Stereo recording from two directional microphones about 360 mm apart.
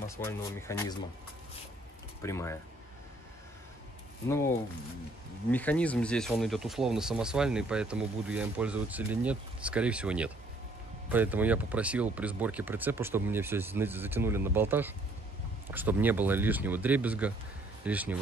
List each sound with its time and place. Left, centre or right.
0.1 s speech: centre
2.2 s speech: centre
4.3 s speech: centre